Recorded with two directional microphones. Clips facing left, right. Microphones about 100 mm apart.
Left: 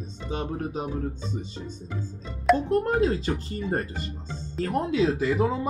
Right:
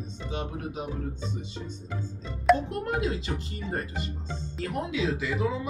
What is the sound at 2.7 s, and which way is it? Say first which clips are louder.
Speech: left 7 dB; 40° left (ahead or behind).